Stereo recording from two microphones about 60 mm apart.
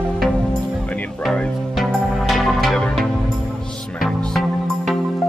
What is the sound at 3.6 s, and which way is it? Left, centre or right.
Music, centre.